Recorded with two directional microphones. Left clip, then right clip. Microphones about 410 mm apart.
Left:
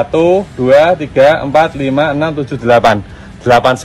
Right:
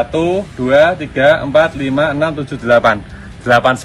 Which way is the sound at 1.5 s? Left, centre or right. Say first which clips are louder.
Left 1 dB; centre.